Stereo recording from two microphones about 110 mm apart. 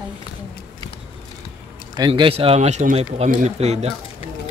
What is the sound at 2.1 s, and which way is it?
Speech, 60° right (ahead or behind).